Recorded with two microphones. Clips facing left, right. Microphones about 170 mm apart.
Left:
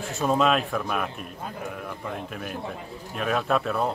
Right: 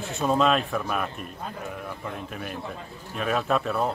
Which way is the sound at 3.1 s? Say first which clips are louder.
Even; centre (ahead or behind).